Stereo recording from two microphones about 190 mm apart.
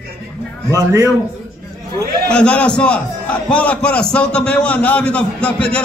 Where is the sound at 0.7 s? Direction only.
20° right (ahead or behind).